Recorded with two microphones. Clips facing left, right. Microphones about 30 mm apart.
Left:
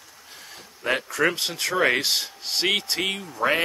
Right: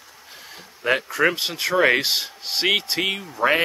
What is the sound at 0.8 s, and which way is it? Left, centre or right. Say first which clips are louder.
Speech: right 3 dB; centre.